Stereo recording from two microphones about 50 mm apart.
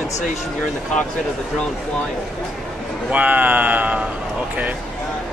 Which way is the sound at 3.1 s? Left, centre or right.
Right.